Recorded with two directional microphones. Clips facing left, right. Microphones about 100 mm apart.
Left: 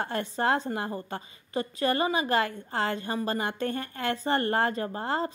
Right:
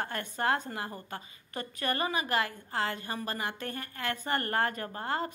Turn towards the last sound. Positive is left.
turn(degrees=25)  # may be behind; listen again after turning